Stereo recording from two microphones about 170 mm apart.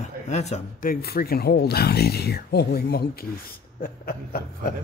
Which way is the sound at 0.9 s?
65° left (ahead or behind).